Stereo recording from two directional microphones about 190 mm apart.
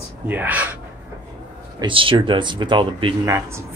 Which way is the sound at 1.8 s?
25° right (ahead or behind).